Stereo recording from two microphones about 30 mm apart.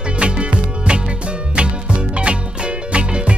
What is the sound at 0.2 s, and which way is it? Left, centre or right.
Music, right.